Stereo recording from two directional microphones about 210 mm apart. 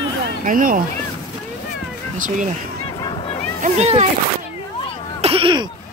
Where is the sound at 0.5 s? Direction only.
40° right (ahead or behind).